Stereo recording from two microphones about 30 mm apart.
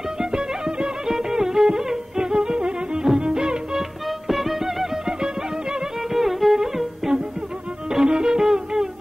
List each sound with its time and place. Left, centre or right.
0.2 s music: right
1.0 s music: centre
4.3 s music: centre
5.0 s music: right
6.1 s music: centre
7.9 s music: right